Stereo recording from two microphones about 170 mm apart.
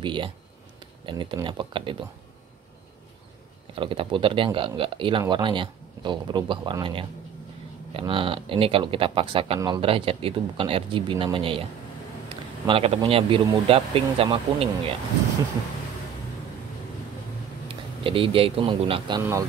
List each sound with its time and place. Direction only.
0.0 s speech: 30° right (ahead or behind)
3.7 s speech: 30° right (ahead or behind)
17.6 s speech: 30° right (ahead or behind)